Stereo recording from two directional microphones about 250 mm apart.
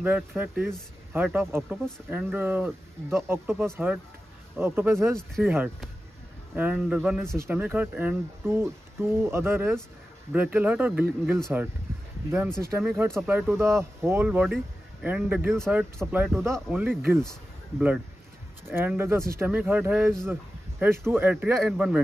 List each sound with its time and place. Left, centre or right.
0.0 s speech: centre